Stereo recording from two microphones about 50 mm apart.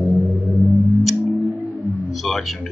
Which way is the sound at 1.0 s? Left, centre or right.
Centre.